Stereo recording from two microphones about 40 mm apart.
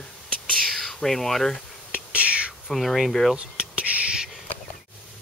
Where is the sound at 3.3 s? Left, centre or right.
Right.